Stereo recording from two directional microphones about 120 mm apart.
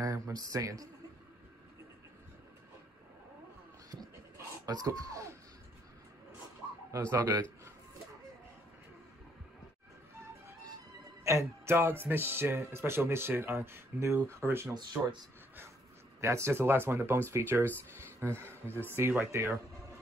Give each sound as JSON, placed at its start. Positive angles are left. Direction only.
{"t": 0.0, "sound": "a man's voice", "side_deg": -30}
{"t": 4.6, "sound": "speech", "side_deg": -30}
{"t": 6.9, "sound": "speech", "side_deg": -25}
{"t": 11.2, "sound": "speech", "side_deg": -25}
{"t": 14.7, "sound": "speech", "side_deg": -35}
{"t": 16.2, "sound": "speech", "side_deg": -25}